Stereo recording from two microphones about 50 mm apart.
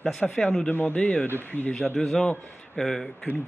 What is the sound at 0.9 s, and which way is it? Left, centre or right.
Speech, left.